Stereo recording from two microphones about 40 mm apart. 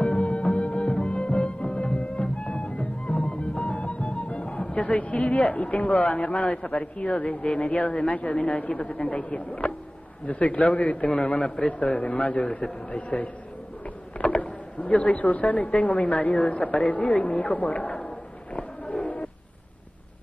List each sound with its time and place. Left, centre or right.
0.0 s music: left
6.6 s speech: left
16.9 s a sound: left